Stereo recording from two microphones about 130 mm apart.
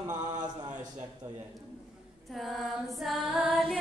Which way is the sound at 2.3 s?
Centre (ahead or behind).